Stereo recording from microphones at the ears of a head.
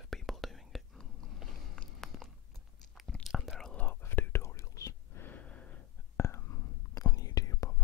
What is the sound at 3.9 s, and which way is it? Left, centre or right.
Whispering, left.